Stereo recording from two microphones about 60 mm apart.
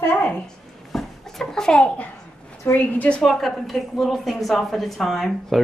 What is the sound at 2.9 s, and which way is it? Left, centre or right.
Speech, left.